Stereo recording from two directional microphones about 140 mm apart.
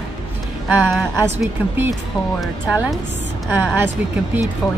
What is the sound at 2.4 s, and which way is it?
Speech, 10° right (ahead or behind).